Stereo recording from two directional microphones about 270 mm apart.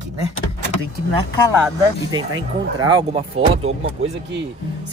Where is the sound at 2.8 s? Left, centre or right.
Centre.